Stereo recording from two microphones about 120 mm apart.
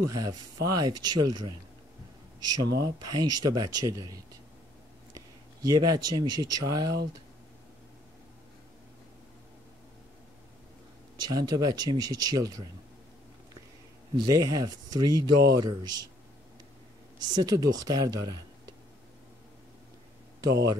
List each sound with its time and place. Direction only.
0.1 s speech: 30° right (ahead or behind)
2.5 s speech: 35° right (ahead or behind)
11.2 s speech: 35° right (ahead or behind)
14.1 s speech: 30° right (ahead or behind)
17.3 s speech: 30° right (ahead or behind)
20.3 s speech: 30° right (ahead or behind)